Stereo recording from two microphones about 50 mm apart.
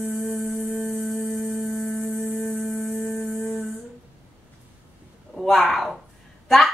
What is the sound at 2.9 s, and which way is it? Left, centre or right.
Music, left.